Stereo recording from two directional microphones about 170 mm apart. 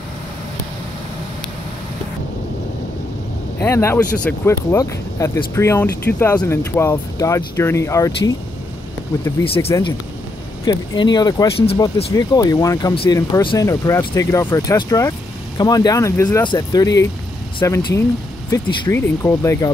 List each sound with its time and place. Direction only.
3.6 s speech: 15° left (ahead or behind)
9.4 s speech: 35° left (ahead or behind); by 19.7 s 15° left (ahead or behind)